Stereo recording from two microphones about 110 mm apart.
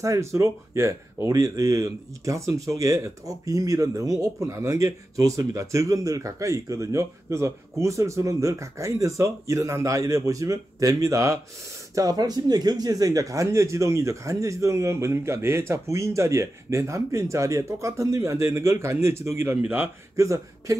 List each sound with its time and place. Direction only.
0.0 s a man's voice: 30° right (ahead or behind)